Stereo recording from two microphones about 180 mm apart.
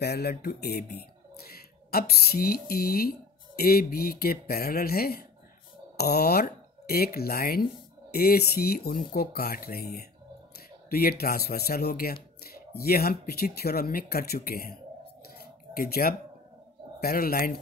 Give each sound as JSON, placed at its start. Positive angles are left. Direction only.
{"t": 0.0, "sound": "speech", "side_deg": 65}